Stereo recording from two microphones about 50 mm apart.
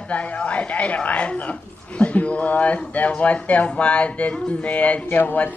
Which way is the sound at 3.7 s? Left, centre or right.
Left.